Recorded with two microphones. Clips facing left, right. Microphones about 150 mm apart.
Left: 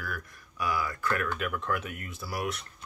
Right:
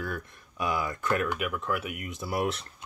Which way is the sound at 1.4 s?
5° right (ahead or behind).